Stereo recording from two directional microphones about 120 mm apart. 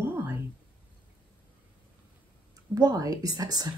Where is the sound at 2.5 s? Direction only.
30° right (ahead or behind).